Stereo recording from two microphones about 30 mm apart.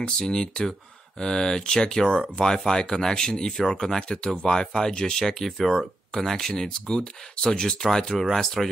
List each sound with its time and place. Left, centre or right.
0.2 s speech: left
5.2 s speech: centre
6.5 s speech: left
8.2 s speech: centre